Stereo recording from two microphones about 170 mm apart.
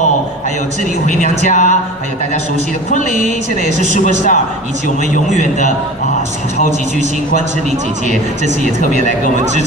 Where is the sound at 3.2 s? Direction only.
45° right (ahead or behind).